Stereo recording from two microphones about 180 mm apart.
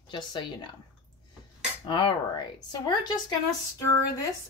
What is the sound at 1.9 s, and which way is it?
Speech, 25° left (ahead or behind).